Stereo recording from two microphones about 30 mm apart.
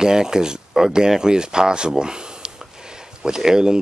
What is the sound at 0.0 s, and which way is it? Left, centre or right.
Speech, right.